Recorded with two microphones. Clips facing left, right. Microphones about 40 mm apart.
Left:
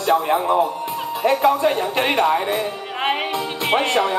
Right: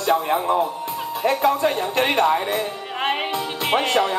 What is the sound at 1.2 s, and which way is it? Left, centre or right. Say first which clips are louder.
Speech: left 2 dB; centre.